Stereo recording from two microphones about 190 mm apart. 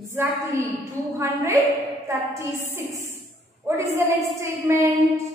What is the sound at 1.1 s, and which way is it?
A woman's voice, 15° right (ahead or behind).